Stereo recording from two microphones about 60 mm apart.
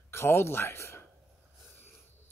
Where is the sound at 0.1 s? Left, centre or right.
Left.